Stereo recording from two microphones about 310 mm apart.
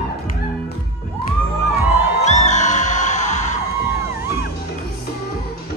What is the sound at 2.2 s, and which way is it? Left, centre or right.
Music, left.